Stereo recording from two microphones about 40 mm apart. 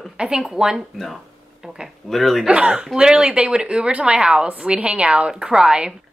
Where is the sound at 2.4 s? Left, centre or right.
Right.